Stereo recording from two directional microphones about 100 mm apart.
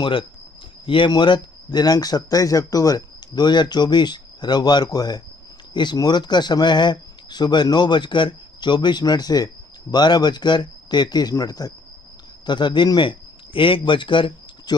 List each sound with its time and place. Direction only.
0.0 s speech: 55° left (ahead or behind); by 11.7 s 40° left (ahead or behind)
12.4 s a man's voice: 50° left (ahead or behind)